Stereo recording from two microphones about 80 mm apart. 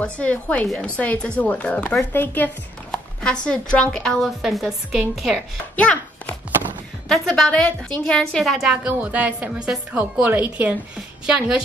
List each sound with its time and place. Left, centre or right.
0.0 s a woman's voice: centre
2.9 s speech: centre
4.4 s a woman's voice: centre
5.8 s a child's voice: centre
8.8 s a woman's voice: centre
11.0 s a woman's voice: centre